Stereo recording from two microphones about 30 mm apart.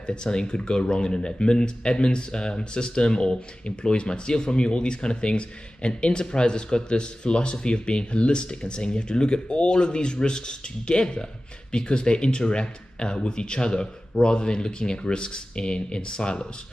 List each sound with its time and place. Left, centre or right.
0.0 s speech: left